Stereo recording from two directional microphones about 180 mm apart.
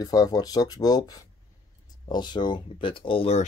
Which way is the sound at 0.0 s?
20° left (ahead or behind).